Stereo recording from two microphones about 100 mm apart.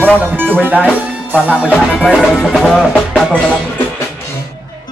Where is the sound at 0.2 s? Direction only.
20° right (ahead or behind).